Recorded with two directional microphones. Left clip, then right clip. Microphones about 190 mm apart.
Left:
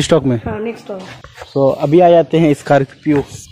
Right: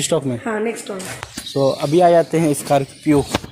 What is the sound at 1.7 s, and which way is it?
Speech, 45° left (ahead or behind).